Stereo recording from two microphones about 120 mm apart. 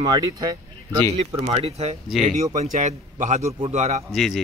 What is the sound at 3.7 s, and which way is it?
Speech, 70° right (ahead or behind).